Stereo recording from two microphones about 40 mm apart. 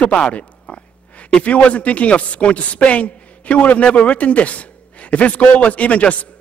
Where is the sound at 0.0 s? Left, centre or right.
Left.